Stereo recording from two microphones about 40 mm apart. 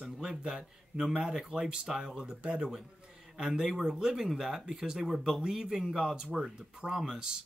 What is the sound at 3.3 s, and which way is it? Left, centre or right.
A man's voice, centre.